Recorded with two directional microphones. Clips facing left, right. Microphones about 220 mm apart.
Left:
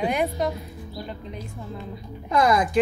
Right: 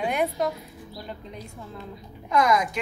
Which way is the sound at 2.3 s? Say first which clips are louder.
Left 2 dB; 30° left (ahead or behind).